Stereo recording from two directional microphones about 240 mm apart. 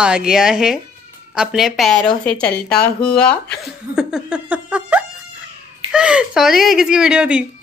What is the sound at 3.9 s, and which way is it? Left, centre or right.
Laughter, centre.